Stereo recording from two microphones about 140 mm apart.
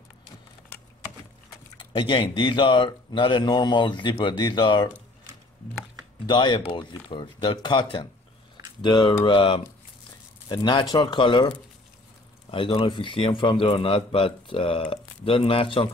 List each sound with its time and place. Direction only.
1.8 s a man's voice: 35° left (ahead or behind)
6.2 s a man's voice: 35° left (ahead or behind)